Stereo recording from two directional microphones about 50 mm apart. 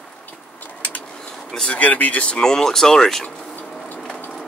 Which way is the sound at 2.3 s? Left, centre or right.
Centre.